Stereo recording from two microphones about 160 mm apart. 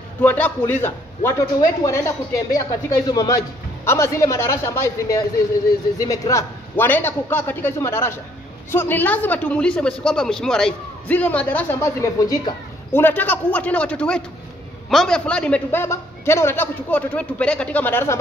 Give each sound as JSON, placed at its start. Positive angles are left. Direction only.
{"t": 0.2, "sound": "speech", "side_deg": 10}